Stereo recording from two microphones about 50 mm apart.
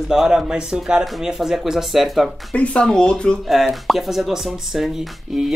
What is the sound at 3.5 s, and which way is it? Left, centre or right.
Speech, centre.